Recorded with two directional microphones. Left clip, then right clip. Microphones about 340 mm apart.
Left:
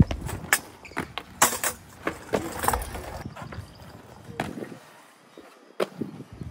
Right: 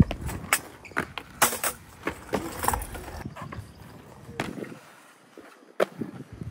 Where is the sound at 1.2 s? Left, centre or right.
Left.